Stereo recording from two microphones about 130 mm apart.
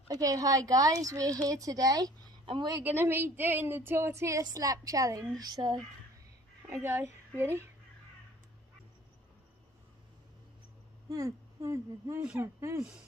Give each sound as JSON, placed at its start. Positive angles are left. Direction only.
{"t": 0.1, "sound": "a woman's voice", "side_deg": -30}
{"t": 2.4, "sound": "a woman's voice", "side_deg": -40}
{"t": 2.8, "sound": "a woman's voice", "side_deg": -15}
{"t": 5.4, "sound": "a sound", "side_deg": -35}
{"t": 6.8, "sound": "a woman's voice", "side_deg": -20}
{"t": 11.1, "sound": "a woman's voice", "side_deg": -25}